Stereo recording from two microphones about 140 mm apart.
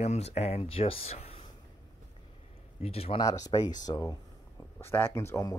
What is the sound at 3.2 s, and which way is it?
Speech, 25° left (ahead or behind).